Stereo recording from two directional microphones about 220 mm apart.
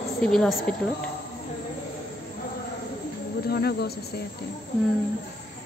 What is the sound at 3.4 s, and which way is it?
Speech, 45° left (ahead or behind).